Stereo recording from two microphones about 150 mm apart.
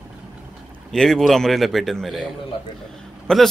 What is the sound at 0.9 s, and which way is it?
A man's voice, centre (ahead or behind).